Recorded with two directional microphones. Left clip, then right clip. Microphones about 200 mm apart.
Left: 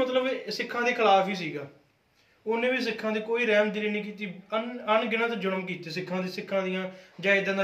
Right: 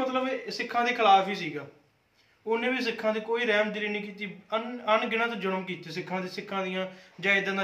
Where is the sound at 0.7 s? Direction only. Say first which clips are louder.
Right 1 dB; 25° right (ahead or behind).